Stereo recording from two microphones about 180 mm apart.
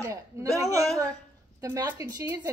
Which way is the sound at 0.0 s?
15° right (ahead or behind).